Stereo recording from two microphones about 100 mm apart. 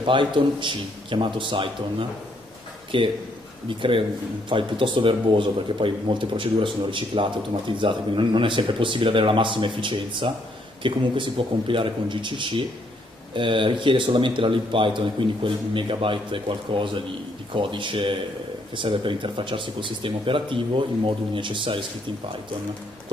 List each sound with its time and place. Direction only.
0.0 s speech: 55° right (ahead or behind)